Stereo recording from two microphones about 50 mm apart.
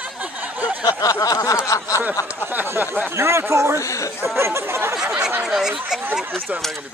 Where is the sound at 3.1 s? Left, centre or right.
Right.